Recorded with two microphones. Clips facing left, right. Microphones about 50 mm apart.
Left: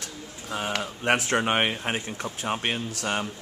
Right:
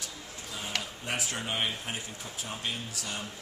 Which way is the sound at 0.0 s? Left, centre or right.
Left.